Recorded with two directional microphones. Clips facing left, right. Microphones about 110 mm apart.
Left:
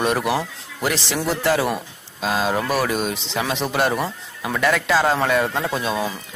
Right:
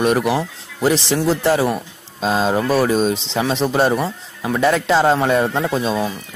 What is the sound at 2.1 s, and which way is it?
Speech, 30° right (ahead or behind).